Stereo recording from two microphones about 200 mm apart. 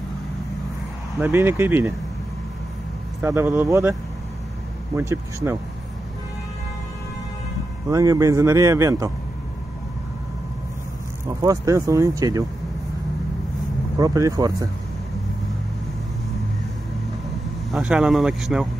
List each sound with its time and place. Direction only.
1.2 s speech: 15° right (ahead or behind)
3.2 s speech: 10° right (ahead or behind)
4.9 s speech: 10° right (ahead or behind)
7.9 s speech: 15° right (ahead or behind)
11.2 s speech: 15° right (ahead or behind)
13.9 s speech: 15° right (ahead or behind)
17.6 s speech: 5° right (ahead or behind)